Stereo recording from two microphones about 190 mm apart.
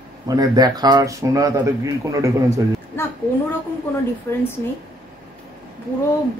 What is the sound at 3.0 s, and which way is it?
Speech, 15° left (ahead or behind).